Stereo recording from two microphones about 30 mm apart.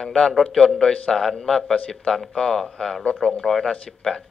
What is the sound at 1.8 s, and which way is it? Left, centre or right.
Speech, left.